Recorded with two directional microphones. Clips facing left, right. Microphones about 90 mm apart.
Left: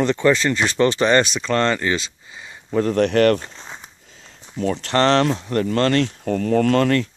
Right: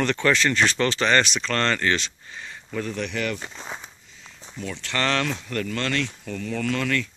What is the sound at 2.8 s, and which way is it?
Speech, 55° left (ahead or behind).